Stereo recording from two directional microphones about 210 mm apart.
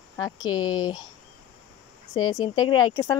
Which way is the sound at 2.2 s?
20° left (ahead or behind).